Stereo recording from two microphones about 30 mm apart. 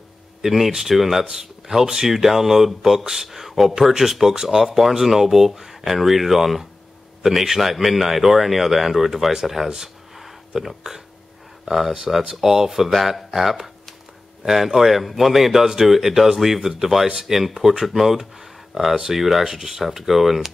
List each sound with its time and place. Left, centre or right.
0.4 s speech: centre
0.9 s speech: centre
9.6 s speech: centre
11.6 s speech: centre